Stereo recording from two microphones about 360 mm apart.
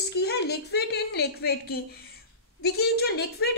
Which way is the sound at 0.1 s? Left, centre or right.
Left.